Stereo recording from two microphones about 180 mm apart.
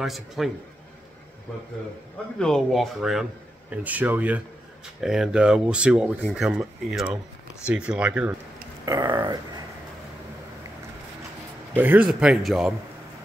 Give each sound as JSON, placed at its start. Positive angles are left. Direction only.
{"t": 0.0, "sound": "speech", "side_deg": 0}
{"t": 2.3, "sound": "speech", "side_deg": 5}
{"t": 8.8, "sound": "a sound", "side_deg": -20}
{"t": 11.7, "sound": "speech", "side_deg": -10}